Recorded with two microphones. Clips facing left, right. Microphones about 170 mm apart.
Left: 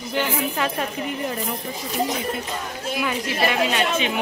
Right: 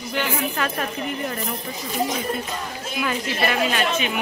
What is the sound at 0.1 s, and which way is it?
Speech, 20° left (ahead or behind).